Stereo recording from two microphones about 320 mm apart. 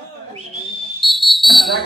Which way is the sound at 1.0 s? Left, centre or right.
Centre.